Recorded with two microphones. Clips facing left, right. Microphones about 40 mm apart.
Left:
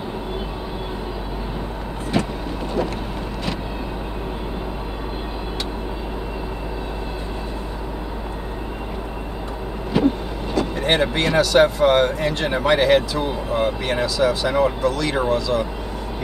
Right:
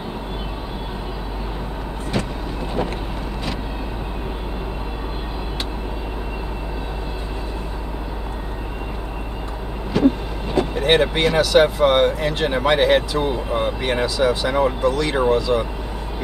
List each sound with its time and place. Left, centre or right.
9.9 s vehicle: centre
10.7 s speech: centre